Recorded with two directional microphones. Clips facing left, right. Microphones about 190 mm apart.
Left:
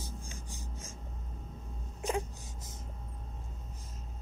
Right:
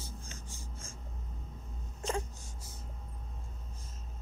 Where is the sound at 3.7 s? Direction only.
15° left (ahead or behind).